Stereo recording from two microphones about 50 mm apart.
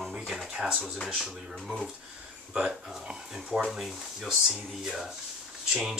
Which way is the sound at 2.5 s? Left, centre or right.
Centre.